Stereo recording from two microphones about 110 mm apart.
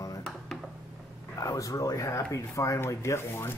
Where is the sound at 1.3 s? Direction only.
30° left (ahead or behind).